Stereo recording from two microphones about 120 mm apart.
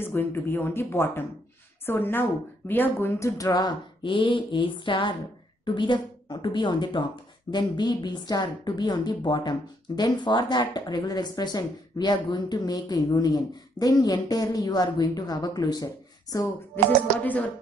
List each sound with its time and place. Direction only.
0.0 s a woman's voice: 20° left (ahead or behind)
16.7 s speech: 15° left (ahead or behind)